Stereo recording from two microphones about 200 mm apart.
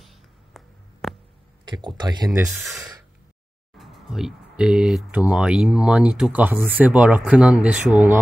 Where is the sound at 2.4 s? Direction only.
Centre (ahead or behind).